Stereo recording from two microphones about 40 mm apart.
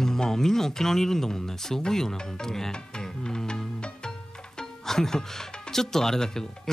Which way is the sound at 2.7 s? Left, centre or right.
Centre.